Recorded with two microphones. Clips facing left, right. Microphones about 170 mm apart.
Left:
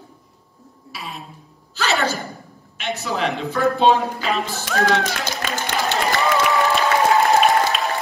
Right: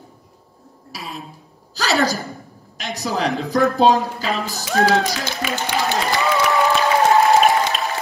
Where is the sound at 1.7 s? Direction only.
40° right (ahead or behind).